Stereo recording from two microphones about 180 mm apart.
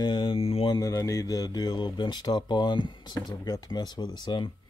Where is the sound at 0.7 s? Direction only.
15° left (ahead or behind).